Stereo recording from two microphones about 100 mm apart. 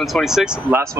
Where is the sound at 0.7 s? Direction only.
30° right (ahead or behind).